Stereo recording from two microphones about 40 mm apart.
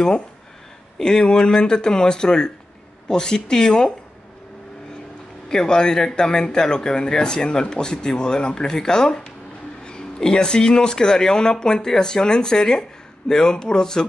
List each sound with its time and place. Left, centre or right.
0.9 s speech: centre
5.5 s speech: centre